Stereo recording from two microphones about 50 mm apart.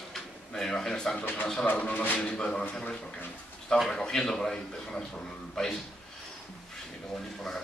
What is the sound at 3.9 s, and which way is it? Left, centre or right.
A man's voice, centre.